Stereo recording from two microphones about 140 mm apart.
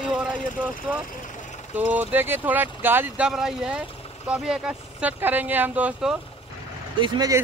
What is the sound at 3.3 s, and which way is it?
Speech, 5° right (ahead or behind).